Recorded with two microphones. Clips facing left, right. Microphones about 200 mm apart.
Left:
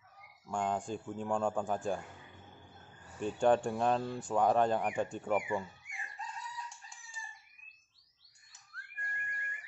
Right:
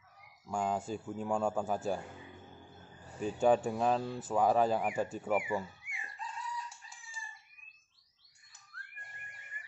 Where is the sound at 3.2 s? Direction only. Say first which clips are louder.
Even; 5° right (ahead or behind).